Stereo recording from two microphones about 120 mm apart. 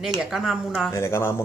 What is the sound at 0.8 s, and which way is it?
Speech, 20° left (ahead or behind).